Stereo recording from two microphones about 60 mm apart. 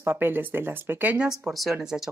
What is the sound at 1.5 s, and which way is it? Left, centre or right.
Speech, centre.